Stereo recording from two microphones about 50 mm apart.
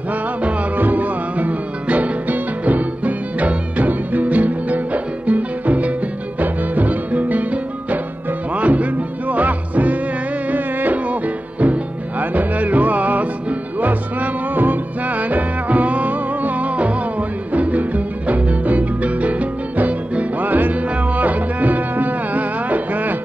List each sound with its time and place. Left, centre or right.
0.4 s music: right